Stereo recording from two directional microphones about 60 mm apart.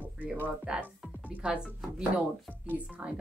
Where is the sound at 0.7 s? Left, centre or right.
Centre.